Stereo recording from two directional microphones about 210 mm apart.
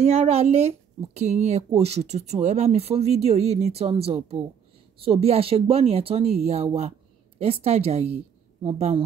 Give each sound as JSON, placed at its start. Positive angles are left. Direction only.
{"t": 0.0, "sound": "speech", "side_deg": -30}